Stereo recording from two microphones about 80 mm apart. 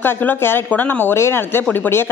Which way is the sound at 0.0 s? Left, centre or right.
Left.